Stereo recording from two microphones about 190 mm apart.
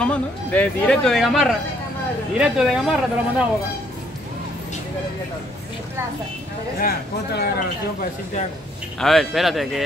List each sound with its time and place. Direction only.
0.0 s speech: 5° left (ahead or behind)
6.8 s speech: 55° left (ahead or behind)
9.0 s speech: centre (ahead or behind)